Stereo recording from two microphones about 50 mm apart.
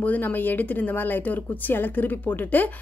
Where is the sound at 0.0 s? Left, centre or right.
Left.